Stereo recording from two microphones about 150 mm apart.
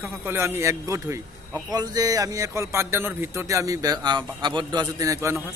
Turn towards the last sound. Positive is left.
turn(degrees=-20)  # may be behind; listen again after turning